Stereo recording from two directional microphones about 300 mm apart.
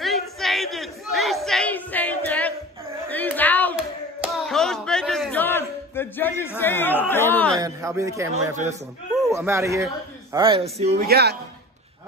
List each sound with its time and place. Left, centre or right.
0.0 s battle cry: centre
3.1 s a sound: centre
7.6 s a man's voice: centre
9.3 s speech: centre
11.1 s a man's voice: right